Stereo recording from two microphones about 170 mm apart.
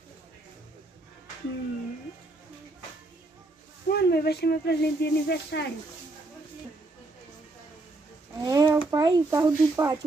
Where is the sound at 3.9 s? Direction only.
70° left (ahead or behind).